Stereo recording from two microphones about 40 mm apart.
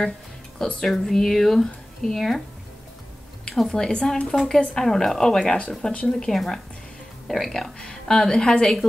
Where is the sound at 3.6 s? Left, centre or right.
Centre.